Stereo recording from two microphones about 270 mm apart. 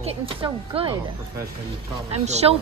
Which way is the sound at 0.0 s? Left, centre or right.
Right.